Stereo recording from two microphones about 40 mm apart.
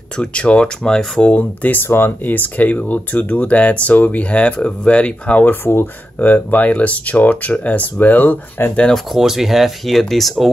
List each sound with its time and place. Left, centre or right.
0.2 s speech: left
0.8 s speech: centre
1.2 s speech: left
1.9 s speech: left
2.3 s speech: left
5.4 s speech: left
6.7 s speech: left
8.6 s speech: left
9.2 s speech: centre